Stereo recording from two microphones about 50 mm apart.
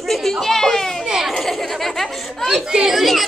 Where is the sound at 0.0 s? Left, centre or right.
Centre.